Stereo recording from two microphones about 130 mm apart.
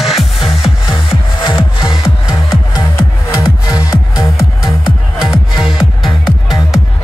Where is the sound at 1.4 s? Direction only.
40° left (ahead or behind).